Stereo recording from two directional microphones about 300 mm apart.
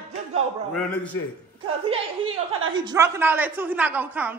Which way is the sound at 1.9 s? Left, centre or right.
Centre.